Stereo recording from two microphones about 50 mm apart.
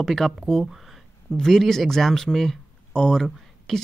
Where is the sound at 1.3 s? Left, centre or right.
Centre.